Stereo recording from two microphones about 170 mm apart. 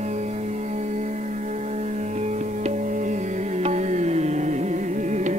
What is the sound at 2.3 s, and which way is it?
Music, 45° right (ahead or behind).